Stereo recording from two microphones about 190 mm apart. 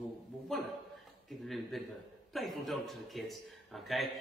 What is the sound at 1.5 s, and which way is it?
A man's voice, centre (ahead or behind).